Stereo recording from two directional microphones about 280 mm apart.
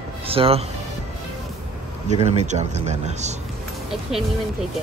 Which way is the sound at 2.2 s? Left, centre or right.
Right.